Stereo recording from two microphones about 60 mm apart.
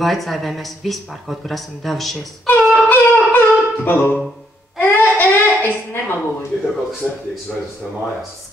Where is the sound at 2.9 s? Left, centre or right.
Left.